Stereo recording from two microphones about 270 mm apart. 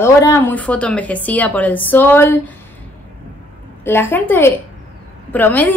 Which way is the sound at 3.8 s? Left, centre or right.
Centre.